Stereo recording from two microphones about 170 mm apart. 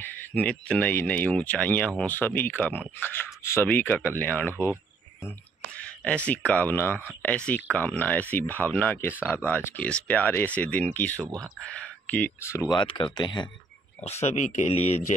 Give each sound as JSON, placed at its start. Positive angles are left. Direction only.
{"t": 0.0, "sound": "speech", "side_deg": 10}
{"t": 5.8, "sound": "speech", "side_deg": 5}
{"t": 11.1, "sound": "speech", "side_deg": -20}
{"t": 12.1, "sound": "speech", "side_deg": 10}
{"t": 12.7, "sound": "speech", "side_deg": 30}
{"t": 14.0, "sound": "speech", "side_deg": 40}